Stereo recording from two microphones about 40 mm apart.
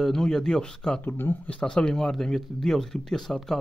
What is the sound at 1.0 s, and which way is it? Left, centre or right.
Speech, left.